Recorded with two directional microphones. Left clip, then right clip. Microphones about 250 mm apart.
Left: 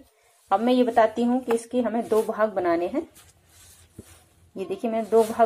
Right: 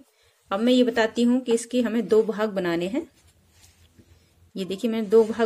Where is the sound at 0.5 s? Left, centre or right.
Right.